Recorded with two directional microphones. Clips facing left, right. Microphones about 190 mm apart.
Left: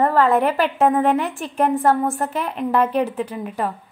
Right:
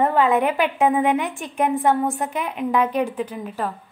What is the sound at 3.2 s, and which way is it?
Speech, 5° left (ahead or behind).